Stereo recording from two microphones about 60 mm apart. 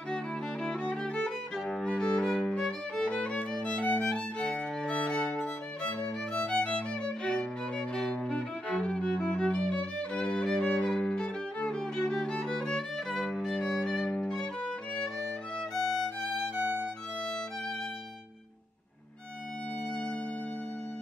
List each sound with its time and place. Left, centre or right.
0.1 s music: centre
2.2 s violin: centre
3.5 s music: centre
15.7 s music: centre
16.5 s violin: right